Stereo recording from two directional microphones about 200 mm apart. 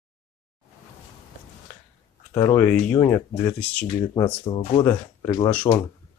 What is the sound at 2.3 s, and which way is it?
Speech, 20° left (ahead or behind).